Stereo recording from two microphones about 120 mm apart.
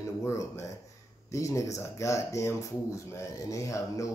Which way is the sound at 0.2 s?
25° left (ahead or behind).